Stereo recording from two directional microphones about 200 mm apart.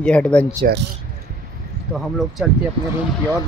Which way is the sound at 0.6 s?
45° right (ahead or behind).